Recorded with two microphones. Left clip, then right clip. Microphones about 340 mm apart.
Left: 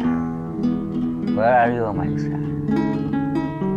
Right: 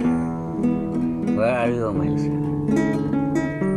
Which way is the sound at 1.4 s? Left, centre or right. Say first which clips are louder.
Left 5 dB; left.